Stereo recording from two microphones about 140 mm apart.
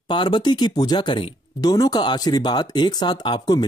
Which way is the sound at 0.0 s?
35° left (ahead or behind).